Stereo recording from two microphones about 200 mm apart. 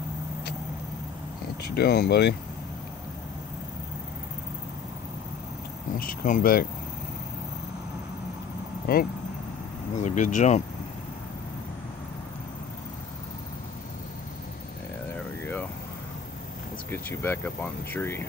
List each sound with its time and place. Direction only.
1.8 s speech: 55° left (ahead or behind)
5.9 s speech: 45° left (ahead or behind)
8.9 s speech: 45° left (ahead or behind)
15.4 s vehicle: 10° left (ahead or behind)
16.9 s speech: 10° left (ahead or behind)